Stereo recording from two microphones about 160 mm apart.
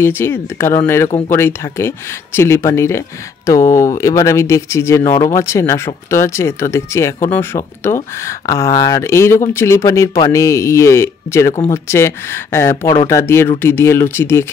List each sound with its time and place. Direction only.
0.0 s speech: 15° left (ahead or behind)